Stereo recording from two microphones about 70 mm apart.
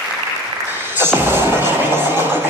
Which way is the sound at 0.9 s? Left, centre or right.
Right.